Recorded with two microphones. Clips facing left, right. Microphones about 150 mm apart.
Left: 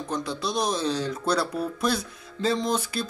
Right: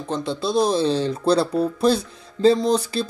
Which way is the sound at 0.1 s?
25° right (ahead or behind).